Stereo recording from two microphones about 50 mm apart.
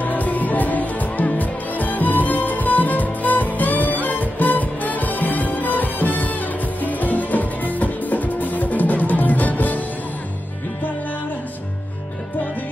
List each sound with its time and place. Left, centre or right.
0.0 s music: left